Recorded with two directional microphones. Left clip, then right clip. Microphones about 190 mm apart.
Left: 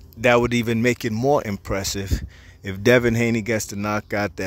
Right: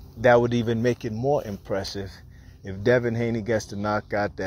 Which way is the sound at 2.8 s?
90° left.